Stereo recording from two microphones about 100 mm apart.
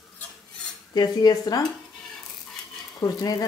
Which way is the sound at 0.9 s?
40° left (ahead or behind).